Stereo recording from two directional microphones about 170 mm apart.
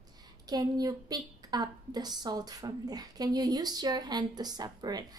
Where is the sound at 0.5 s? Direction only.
20° right (ahead or behind).